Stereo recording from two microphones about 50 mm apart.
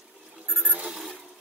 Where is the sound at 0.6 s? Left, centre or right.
Right.